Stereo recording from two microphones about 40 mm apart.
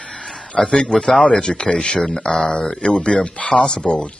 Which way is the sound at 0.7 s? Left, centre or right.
Left.